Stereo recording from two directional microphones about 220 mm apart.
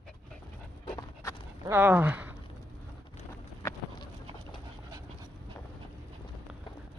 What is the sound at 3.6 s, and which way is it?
Bird, 20° left (ahead or behind).